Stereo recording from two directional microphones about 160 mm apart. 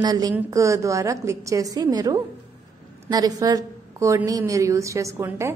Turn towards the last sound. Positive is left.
turn(degrees=-20)  # may be behind; listen again after turning